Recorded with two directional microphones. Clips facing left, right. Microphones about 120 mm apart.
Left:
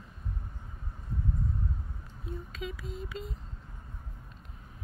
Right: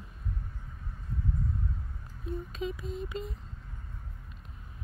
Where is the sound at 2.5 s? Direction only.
25° right (ahead or behind).